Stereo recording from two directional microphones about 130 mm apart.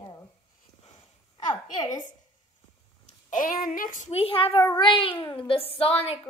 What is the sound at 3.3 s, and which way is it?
Speech, 90° left.